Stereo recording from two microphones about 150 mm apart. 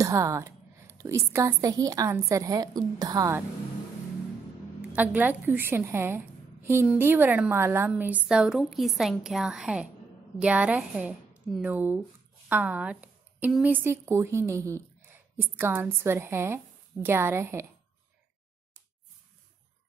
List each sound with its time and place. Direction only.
0.0 s a woman's voice: 20° right (ahead or behind)
4.9 s a woman's voice: 10° right (ahead or behind)